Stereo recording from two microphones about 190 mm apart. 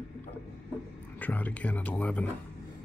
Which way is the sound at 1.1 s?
10° left (ahead or behind).